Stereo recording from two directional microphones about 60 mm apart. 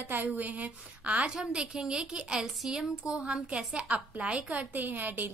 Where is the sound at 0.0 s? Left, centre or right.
Right.